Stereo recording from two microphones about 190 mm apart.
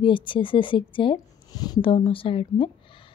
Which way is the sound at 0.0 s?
25° left (ahead or behind).